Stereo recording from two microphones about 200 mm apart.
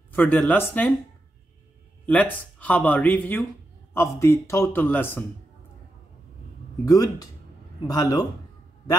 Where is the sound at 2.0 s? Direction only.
5° left (ahead or behind).